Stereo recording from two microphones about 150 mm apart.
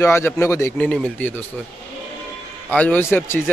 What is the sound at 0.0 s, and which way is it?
Speech, 15° left (ahead or behind).